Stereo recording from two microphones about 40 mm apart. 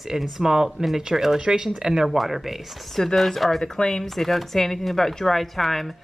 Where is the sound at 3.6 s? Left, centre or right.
Centre.